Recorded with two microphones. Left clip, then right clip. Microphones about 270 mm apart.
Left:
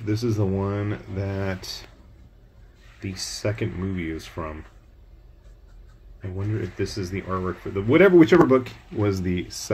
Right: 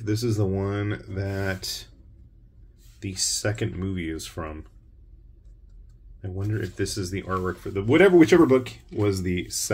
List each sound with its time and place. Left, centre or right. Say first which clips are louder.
0.0 s speech: left 1 dB; centre
3.0 s speech: right 2 dB; centre
6.3 s speech: left 1 dB; centre